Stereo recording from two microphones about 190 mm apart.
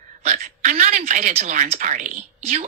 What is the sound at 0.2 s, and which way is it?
A woman's voice, 35° right (ahead or behind).